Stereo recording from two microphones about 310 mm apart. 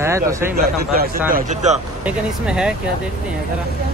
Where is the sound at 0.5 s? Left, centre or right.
Right.